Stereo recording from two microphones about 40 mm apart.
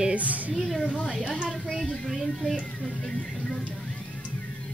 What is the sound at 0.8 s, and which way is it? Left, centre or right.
Speech, left.